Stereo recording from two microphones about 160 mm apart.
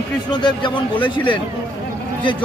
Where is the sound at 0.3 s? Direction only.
30° left (ahead or behind).